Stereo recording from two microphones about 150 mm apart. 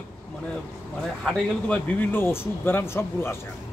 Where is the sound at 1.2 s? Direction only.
5° left (ahead or behind).